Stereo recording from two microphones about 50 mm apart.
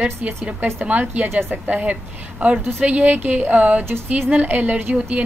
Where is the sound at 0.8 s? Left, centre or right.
Right.